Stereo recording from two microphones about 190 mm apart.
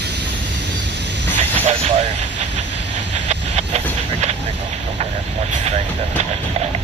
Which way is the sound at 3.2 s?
35° right (ahead or behind).